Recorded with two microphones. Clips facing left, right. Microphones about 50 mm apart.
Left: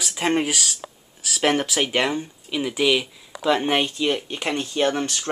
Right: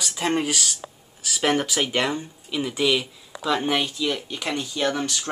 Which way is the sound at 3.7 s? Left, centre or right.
Left.